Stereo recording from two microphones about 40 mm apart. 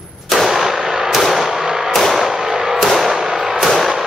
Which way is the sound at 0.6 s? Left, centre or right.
Centre.